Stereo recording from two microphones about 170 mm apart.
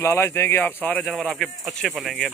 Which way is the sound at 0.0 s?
15° left (ahead or behind).